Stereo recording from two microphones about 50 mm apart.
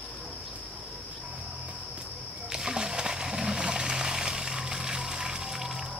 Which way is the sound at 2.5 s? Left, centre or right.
Centre.